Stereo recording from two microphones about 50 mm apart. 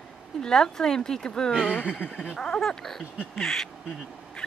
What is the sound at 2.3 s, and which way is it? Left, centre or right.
Speech, centre.